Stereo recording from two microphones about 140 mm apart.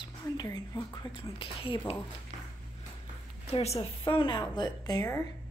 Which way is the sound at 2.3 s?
60° right (ahead or behind).